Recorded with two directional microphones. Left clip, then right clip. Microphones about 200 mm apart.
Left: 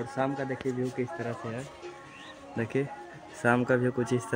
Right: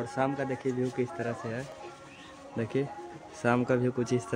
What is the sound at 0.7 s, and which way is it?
Speech, 30° left (ahead or behind).